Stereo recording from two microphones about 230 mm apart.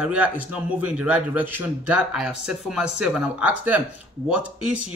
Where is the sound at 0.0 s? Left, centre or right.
Centre.